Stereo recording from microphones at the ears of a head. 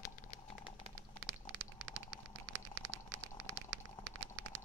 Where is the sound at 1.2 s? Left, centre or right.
Right.